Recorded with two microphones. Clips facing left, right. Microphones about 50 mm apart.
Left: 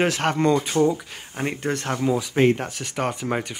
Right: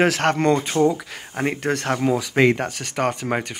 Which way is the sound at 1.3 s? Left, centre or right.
Right.